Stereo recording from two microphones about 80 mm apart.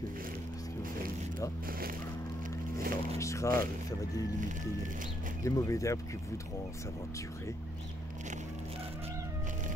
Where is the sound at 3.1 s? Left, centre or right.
Left.